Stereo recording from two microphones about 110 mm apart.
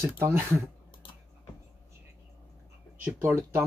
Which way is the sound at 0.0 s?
25° right (ahead or behind).